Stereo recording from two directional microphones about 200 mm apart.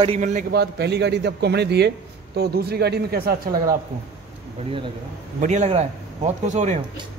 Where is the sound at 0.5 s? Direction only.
55° right (ahead or behind).